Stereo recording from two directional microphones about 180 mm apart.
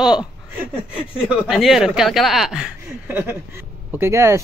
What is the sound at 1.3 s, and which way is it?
Speech, centre (ahead or behind).